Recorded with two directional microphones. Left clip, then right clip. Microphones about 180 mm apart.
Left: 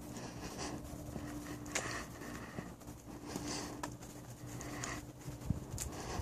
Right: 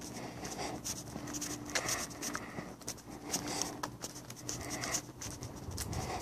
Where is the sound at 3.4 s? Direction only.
Centre (ahead or behind).